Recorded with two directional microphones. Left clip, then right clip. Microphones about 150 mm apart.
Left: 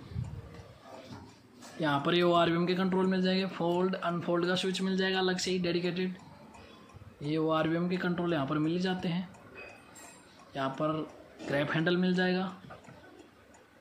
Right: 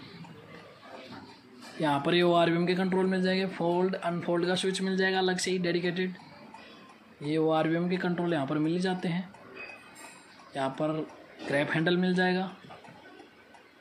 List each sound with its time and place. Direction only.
1.8 s a man's voice: 25° right (ahead or behind)
7.2 s a man's voice: 20° right (ahead or behind)
10.5 s a man's voice: 25° right (ahead or behind)